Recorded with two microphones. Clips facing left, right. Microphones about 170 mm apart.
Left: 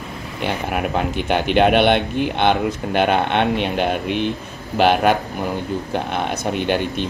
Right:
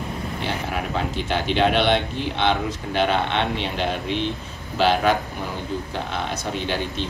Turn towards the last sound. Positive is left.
turn(degrees=60)  # may be behind; listen again after turning